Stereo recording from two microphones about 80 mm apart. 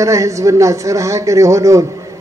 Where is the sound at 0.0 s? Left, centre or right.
Right.